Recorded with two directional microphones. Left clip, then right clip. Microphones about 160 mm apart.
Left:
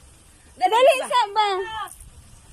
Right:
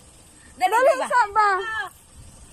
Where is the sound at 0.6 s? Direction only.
10° left (ahead or behind).